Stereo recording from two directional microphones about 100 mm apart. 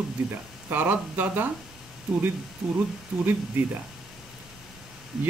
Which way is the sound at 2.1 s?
5° right (ahead or behind).